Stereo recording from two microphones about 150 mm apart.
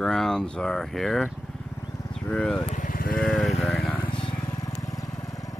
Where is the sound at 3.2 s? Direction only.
Centre (ahead or behind).